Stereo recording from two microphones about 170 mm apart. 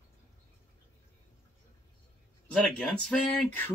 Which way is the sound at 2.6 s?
5° left (ahead or behind).